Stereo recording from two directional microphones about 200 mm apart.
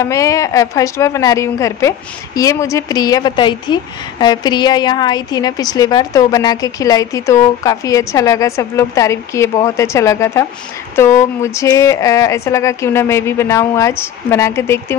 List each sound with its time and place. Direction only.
0.0 s a woman's voice: 15° left (ahead or behind)